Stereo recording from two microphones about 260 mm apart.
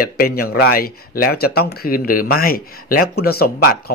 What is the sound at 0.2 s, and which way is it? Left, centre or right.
Speech, left.